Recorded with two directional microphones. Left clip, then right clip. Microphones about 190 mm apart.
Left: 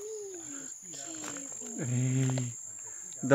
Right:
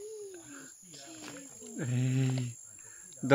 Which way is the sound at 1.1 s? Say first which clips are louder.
Left 4 dB; 35° left (ahead or behind).